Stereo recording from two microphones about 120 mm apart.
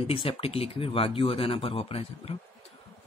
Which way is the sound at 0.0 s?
50° left (ahead or behind).